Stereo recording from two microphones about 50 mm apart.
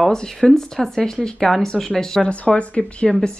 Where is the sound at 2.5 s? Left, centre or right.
Left.